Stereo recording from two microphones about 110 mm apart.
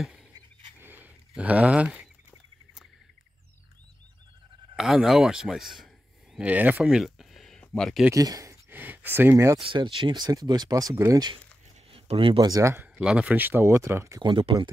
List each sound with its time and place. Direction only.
0.7 s a sound: 20° right (ahead or behind)
1.3 s speech: 10° right (ahead or behind)
4.7 s speech: 5° right (ahead or behind)
8.1 s speech: 35° right (ahead or behind)
8.6 s speech: 15° right (ahead or behind)
9.6 s speech: 50° right (ahead or behind); by 11.3 s 35° right (ahead or behind)
11.9 s a sound: 55° right (ahead or behind)
12.4 s speech: 35° right (ahead or behind)
12.7 s a sound: 15° right (ahead or behind)
13.0 s speech: 10° right (ahead or behind); by 14.2 s 25° right (ahead or behind)
14.2 s speech: 45° right (ahead or behind)